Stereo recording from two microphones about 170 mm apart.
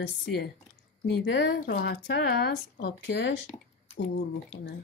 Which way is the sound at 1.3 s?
85° left.